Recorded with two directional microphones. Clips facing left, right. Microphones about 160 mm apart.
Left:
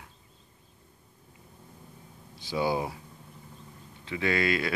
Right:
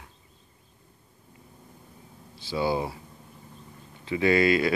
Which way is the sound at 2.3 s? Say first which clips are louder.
Right 1 dB; 15° left (ahead or behind).